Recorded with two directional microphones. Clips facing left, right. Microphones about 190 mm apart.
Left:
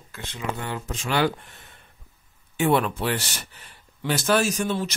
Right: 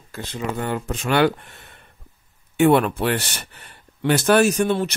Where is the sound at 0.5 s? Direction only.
50° right (ahead or behind).